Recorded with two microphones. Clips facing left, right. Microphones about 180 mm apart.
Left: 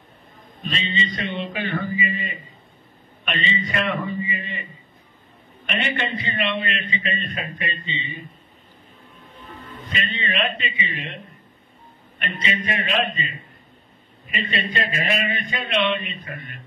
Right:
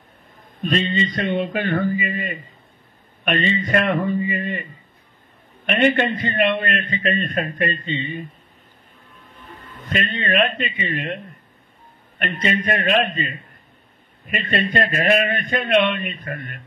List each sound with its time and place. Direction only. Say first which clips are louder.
0.6 s a man's voice: right 7 dB; 50° right (ahead or behind)
5.7 s a man's voice: right 8 dB; 50° right (ahead or behind)
9.8 s a man's voice: right 6 dB; 50° right (ahead or behind)
12.2 s a man's voice: right 5 dB; 50° right (ahead or behind)